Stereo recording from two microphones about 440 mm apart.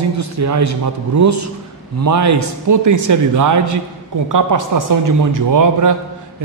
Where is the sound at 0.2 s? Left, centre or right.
Right.